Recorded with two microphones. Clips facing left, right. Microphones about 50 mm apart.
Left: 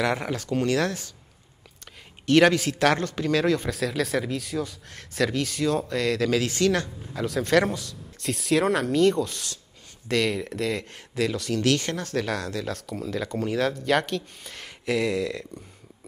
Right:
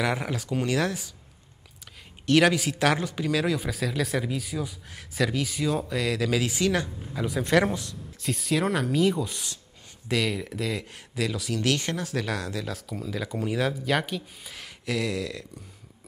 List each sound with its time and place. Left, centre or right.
0.0 s speech: centre
2.2 s speech: centre
8.2 s speech: centre
10.0 s speech: centre
14.9 s speech: centre